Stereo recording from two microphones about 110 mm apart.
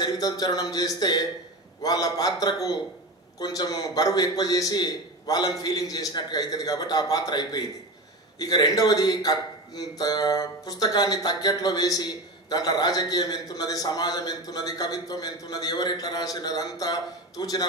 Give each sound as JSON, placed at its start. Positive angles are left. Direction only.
{"t": 0.0, "sound": "speech", "side_deg": 35}